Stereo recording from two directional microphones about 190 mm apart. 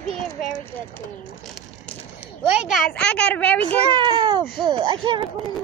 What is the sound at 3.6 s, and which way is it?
A child's voice, 25° right (ahead or behind).